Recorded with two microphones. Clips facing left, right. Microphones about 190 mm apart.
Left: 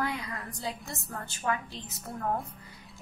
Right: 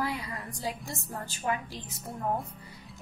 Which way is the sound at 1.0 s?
25° right (ahead or behind).